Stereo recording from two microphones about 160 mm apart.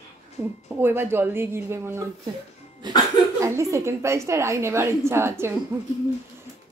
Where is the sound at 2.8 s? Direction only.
25° right (ahead or behind).